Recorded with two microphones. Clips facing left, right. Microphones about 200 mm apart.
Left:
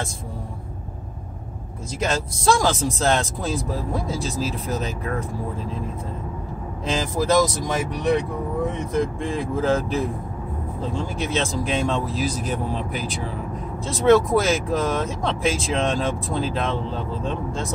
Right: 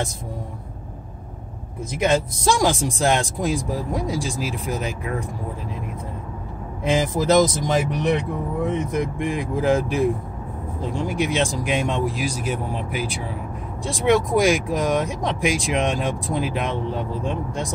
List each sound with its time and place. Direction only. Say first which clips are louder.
2.6 s speech: right 1 dB; 15° right (ahead or behind)
6.8 s speech: right 3 dB; 15° right (ahead or behind)